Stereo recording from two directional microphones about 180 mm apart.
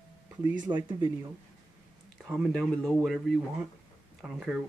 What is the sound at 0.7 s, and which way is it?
Speech, 20° right (ahead or behind).